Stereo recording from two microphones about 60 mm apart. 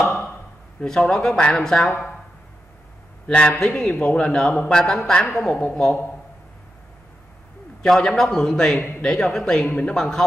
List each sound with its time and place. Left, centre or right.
0.7 s a man's voice: centre
1.9 s speech: left
3.3 s a man's voice: centre
7.8 s a man's voice: centre
9.7 s speech: left
9.9 s a man's voice: centre